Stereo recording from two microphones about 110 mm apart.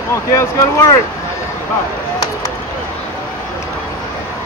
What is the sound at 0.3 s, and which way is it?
Speech, 25° left (ahead or behind).